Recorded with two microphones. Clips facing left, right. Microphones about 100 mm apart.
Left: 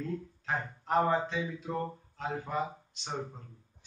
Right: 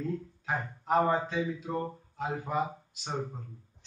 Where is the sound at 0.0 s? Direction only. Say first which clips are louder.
Right 2 dB; 5° right (ahead or behind).